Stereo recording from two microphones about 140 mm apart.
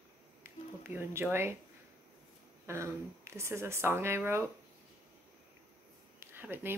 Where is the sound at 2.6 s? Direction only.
20° right (ahead or behind).